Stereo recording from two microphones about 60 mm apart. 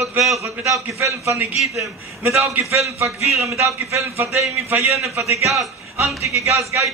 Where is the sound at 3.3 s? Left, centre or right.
Right.